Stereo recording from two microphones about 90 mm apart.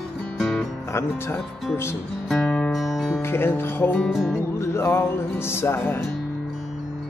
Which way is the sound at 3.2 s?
25° left (ahead or behind).